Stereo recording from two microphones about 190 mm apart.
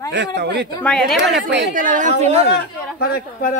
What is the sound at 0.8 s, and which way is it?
Speech, 5° left (ahead or behind).